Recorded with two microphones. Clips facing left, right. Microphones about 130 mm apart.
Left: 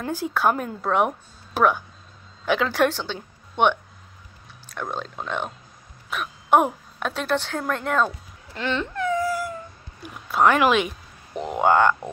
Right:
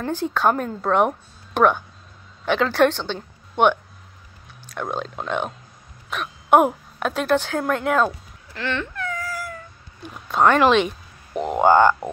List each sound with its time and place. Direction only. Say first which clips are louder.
0.0 s a woman's voice: right 2 dB; 10° left (ahead or behind)
4.9 s speech: right 4 dB; centre (ahead or behind)
8.5 s dog: left 1 dB; 20° left (ahead or behind)
10.0 s a woman's voice: right 1 dB; 10° left (ahead or behind)